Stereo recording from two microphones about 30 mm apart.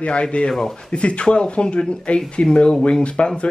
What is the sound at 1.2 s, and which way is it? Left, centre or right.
Speech, left.